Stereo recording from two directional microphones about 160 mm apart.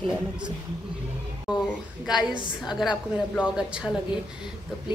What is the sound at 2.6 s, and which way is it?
A woman's voice, centre (ahead or behind).